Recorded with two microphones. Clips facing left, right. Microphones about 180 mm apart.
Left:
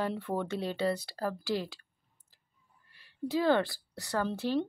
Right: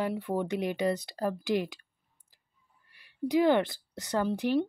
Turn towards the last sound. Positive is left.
turn(degrees=-15)  # may be behind; listen again after turning